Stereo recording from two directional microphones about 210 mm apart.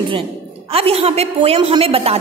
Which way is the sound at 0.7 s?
30° right (ahead or behind).